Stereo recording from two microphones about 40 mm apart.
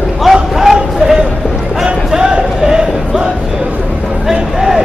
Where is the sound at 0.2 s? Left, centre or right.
Centre.